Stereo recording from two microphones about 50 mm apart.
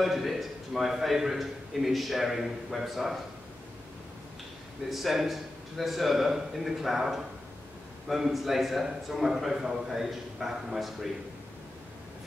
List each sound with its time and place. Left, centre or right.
0.0 s a man's voice: centre
4.8 s a man's voice: centre